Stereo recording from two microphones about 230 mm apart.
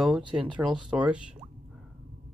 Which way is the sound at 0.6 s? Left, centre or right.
Centre.